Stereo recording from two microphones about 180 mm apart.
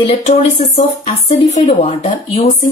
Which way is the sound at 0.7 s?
35° left (ahead or behind).